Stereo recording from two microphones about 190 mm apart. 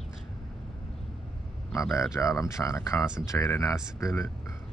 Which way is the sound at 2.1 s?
15° left (ahead or behind).